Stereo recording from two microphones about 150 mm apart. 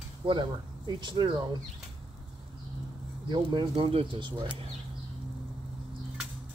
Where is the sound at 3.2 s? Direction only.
30° right (ahead or behind).